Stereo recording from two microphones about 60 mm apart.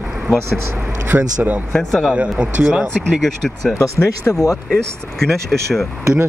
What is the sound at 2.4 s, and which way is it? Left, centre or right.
Speech, centre.